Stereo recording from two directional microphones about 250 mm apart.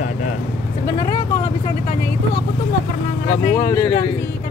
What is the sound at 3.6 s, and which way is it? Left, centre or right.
Speech, centre.